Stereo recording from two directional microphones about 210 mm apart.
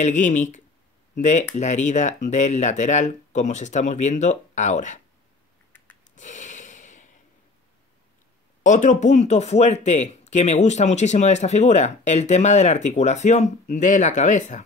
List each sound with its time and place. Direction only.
0.0 s speech: 35° left (ahead or behind)
6.1 s snort: 35° left (ahead or behind)
8.6 s speech: 35° left (ahead or behind)